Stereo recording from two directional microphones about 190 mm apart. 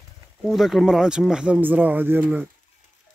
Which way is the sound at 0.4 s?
Centre (ahead or behind).